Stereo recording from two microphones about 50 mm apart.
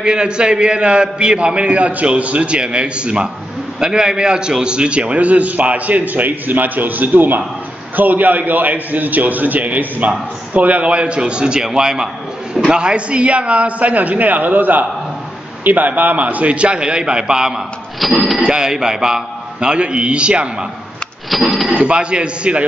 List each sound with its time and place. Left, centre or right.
0.0 s a man's voice: centre
18.0 s speech: centre
18.4 s a man's voice: centre
21.3 s speech: centre
21.7 s a man's voice: centre